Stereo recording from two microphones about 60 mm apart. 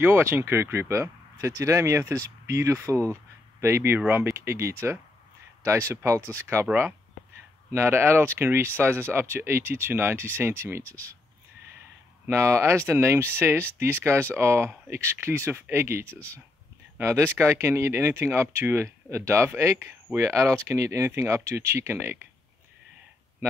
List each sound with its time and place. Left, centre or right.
0.0 s speech: right
10.8 s speech: left
12.3 s speech: right
12.8 s speech: right
16.1 s speech: left
17.0 s speech: right